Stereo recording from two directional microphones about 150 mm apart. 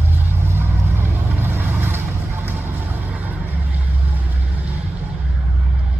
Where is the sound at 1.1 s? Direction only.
15° right (ahead or behind).